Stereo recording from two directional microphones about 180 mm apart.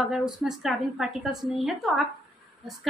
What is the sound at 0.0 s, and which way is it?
A woman's voice, 5° right (ahead or behind).